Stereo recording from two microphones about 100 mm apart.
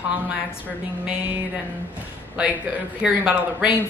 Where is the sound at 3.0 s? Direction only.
10° right (ahead or behind).